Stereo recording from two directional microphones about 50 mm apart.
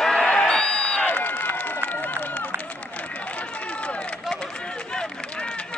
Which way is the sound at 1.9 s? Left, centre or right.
Left.